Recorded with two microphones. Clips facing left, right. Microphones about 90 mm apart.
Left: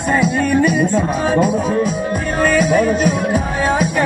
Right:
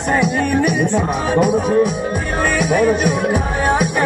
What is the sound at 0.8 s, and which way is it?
Music, 20° right (ahead or behind).